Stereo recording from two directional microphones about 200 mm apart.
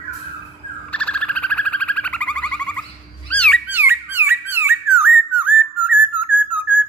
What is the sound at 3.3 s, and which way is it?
Music, 5° left (ahead or behind).